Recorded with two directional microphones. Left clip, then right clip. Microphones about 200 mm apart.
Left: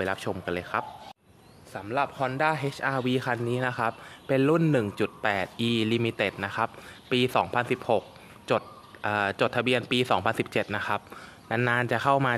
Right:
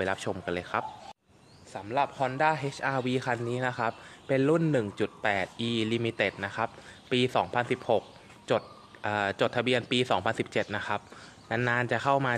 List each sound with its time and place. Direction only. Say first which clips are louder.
0.0 s speech: left 1 dB; centre (ahead or behind); by 12.4 s 20° left (ahead or behind)